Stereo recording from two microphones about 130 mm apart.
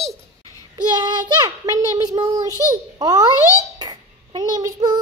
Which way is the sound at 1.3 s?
30° right (ahead or behind).